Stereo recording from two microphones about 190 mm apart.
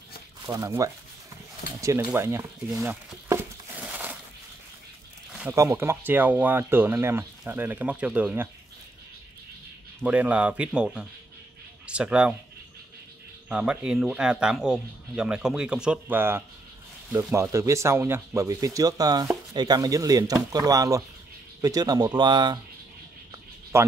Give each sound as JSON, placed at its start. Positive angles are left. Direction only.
{"t": 0.5, "sound": "speech", "side_deg": -15}
{"t": 2.8, "sound": "a sound", "side_deg": -10}
{"t": 5.3, "sound": "speech", "side_deg": -10}
{"t": 10.0, "sound": "speech", "side_deg": -5}
{"t": 13.5, "sound": "speech", "side_deg": -5}
{"t": 23.7, "sound": "speech", "side_deg": -15}